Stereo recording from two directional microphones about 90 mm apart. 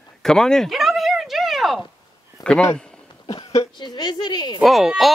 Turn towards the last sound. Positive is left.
turn(degrees=0)  # may be behind; listen again after turning